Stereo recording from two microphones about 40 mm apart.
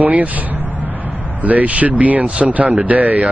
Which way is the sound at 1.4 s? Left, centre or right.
Right.